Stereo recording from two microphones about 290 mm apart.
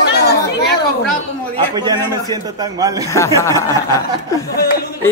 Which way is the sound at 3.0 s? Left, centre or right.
Centre.